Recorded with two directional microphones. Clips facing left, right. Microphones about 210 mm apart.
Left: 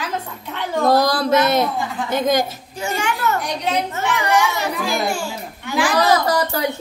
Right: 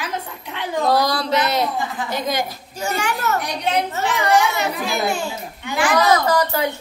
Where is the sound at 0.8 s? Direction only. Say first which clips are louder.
Left 3 dB; 50° left (ahead or behind).